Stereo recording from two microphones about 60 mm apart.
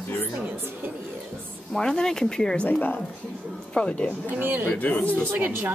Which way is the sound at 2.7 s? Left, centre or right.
Left.